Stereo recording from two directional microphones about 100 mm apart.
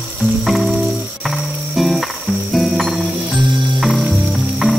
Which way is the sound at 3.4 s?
50° right (ahead or behind).